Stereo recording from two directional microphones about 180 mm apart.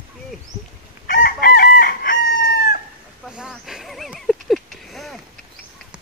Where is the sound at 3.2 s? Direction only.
5° right (ahead or behind).